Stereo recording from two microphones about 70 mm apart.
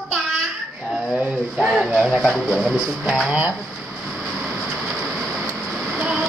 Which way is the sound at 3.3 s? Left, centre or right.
Right.